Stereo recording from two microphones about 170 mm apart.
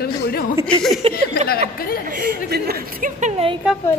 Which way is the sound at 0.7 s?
5° left (ahead or behind).